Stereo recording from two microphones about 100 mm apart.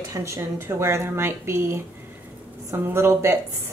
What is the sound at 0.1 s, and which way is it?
Speech, 30° right (ahead or behind).